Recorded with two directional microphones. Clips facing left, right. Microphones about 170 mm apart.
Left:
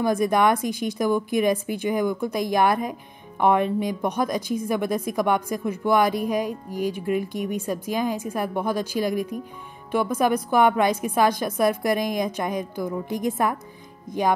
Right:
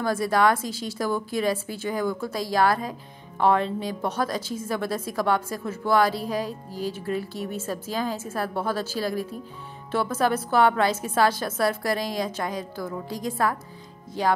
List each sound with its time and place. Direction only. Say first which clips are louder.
0.0 s speech: left 2 dB; 20° left (ahead or behind)